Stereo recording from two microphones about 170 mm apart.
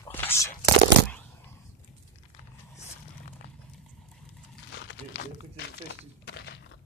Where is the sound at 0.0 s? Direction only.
15° left (ahead or behind).